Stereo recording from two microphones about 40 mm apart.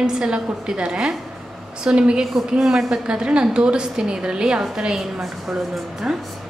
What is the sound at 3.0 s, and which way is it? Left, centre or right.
A woman's voice, right.